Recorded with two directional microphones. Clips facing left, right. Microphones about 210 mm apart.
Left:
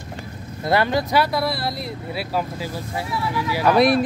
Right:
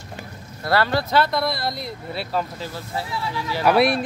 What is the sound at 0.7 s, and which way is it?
Speech, 15° left (ahead or behind).